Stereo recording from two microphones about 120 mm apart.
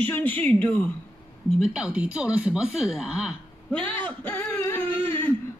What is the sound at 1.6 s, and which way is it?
Speech, 5° right (ahead or behind).